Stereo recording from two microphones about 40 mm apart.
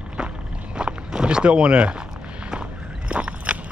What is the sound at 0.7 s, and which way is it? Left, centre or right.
Walk, right.